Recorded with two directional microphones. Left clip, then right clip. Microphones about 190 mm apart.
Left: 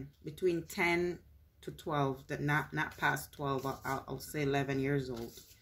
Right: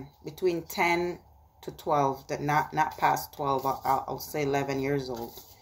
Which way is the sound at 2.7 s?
45° left (ahead or behind).